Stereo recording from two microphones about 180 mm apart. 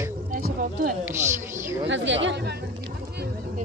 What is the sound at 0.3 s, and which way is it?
Music, 55° right (ahead or behind).